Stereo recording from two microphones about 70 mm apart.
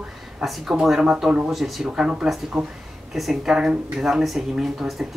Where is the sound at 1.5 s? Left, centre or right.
Centre.